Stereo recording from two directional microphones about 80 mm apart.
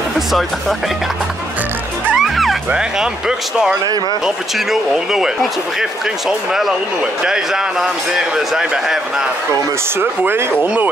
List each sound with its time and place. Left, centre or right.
0.3 s speech: centre
2.1 s music: centre
2.7 s speech: centre
9.9 s speech: right